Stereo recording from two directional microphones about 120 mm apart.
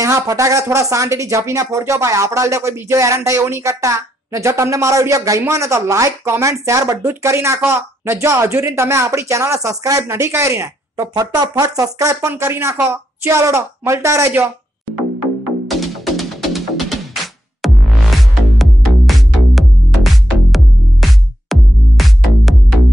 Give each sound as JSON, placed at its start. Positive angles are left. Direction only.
{"t": 0.0, "sound": "speech", "side_deg": -25}
{"t": 15.7, "sound": "music", "side_deg": 0}